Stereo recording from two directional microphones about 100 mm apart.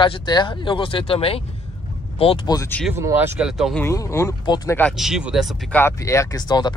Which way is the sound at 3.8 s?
30° left (ahead or behind).